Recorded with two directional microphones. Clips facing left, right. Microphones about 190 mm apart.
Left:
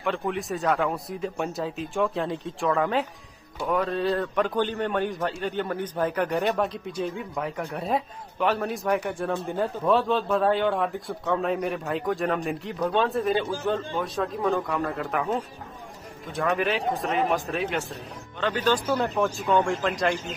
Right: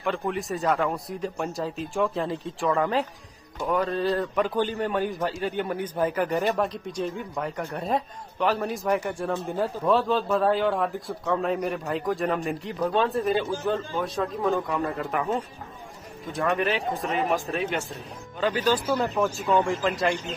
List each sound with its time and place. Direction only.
0.0 s a man's voice: centre (ahead or behind)